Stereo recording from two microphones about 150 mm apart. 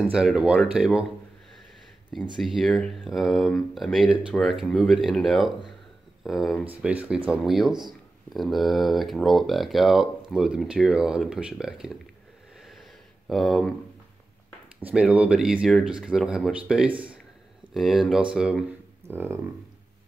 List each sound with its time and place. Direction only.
0.1 s speech: 5° right (ahead or behind)
2.4 s speech: centre (ahead or behind)
12.5 s wheeze: centre (ahead or behind)
13.3 s speech: centre (ahead or behind)
14.9 s speech: 10° right (ahead or behind)
19.0 s speech: 15° right (ahead or behind)